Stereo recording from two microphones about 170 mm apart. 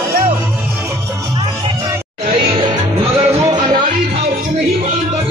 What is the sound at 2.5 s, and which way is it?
Music, 30° right (ahead or behind).